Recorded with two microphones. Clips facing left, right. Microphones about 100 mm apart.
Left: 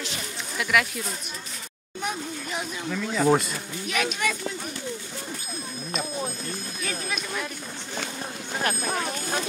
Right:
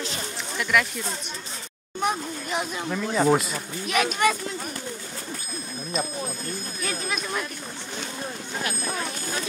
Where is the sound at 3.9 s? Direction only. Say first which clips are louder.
Right 5 dB; 50° right (ahead or behind).